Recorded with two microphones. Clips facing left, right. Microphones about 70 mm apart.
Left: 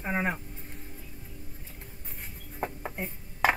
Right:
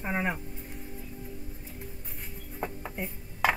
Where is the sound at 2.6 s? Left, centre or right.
Left.